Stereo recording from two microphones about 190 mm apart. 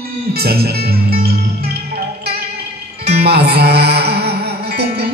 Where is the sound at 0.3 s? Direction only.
55° right (ahead or behind).